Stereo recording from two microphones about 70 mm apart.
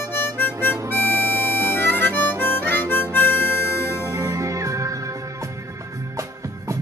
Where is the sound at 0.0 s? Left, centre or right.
Left.